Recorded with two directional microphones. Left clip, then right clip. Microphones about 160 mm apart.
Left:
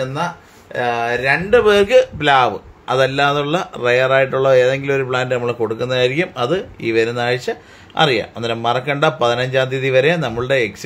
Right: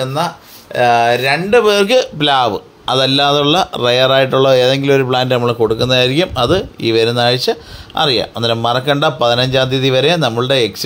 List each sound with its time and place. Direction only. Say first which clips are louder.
0.0 s speech: right 4 dB; 45° right (ahead or behind); by 10.7 s 30° right (ahead or behind)